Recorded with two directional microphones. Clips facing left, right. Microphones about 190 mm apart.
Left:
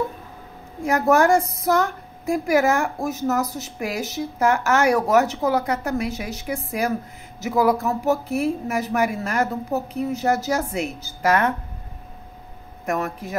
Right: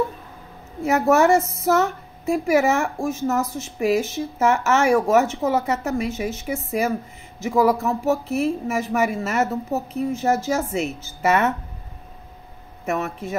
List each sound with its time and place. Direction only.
0.8 s a woman's voice: 5° right (ahead or behind)
12.8 s a woman's voice: 5° right (ahead or behind)